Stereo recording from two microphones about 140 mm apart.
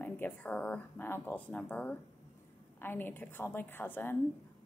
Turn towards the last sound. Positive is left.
turn(degrees=15)  # may be behind; listen again after turning